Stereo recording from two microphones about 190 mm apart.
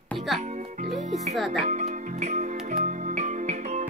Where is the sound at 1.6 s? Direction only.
40° right (ahead or behind).